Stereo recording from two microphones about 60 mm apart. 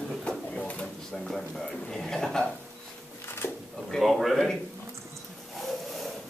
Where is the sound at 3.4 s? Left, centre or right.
Left.